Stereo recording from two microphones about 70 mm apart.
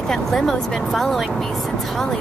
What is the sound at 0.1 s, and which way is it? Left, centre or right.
Speech, centre.